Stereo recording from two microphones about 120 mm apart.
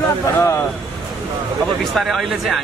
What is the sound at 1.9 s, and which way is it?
Speech, centre (ahead or behind).